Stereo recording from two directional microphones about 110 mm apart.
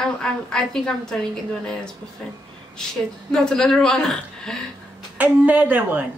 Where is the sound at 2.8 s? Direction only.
5° left (ahead or behind).